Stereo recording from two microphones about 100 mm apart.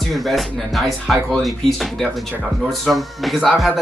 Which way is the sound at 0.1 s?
Centre (ahead or behind).